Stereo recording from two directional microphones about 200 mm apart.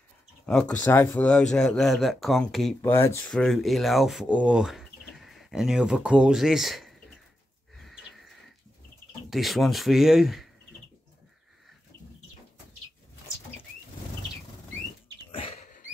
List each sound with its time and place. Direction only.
0.5 s speech: 5° left (ahead or behind)
2.8 s speech: 10° left (ahead or behind)
3.3 s speech: centre (ahead or behind)
7.7 s a sound: centre (ahead or behind)
9.3 s speech: centre (ahead or behind)
15.3 s a sound: 25° left (ahead or behind)